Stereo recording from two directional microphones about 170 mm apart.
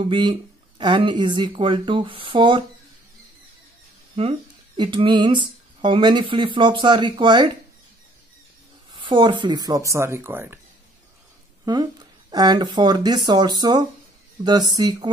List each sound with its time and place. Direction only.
0.0 s speech: 30° right (ahead or behind)
4.2 s speech: 30° right (ahead or behind)
8.9 s speech: 30° right (ahead or behind); by 10.6 s 15° right (ahead or behind)
11.6 s speech: 25° right (ahead or behind)